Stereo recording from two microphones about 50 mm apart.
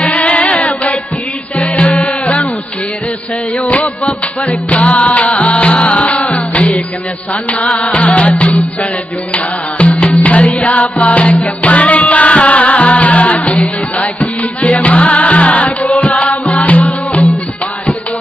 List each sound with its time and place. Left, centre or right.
0.0 s music: left
3.5 s music: left